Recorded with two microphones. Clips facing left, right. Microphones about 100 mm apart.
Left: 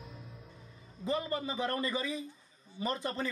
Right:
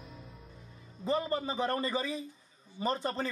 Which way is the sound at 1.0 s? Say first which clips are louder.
Right 2 dB; 30° right (ahead or behind).